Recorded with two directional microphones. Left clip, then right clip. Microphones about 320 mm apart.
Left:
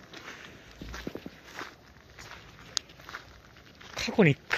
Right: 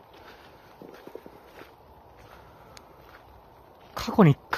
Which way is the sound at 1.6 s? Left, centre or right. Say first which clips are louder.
Left 9 dB; left.